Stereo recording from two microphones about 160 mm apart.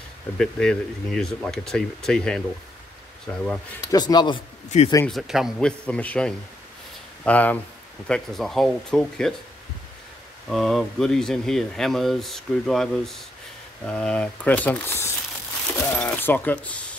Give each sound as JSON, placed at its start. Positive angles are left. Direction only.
{"t": 0.4, "sound": "speech", "side_deg": 5}
{"t": 3.9, "sound": "speech", "side_deg": 25}
{"t": 5.0, "sound": "speech", "side_deg": 0}
{"t": 10.5, "sound": "speech", "side_deg": 0}